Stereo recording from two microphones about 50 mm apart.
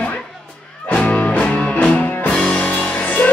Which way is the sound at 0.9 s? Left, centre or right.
Left.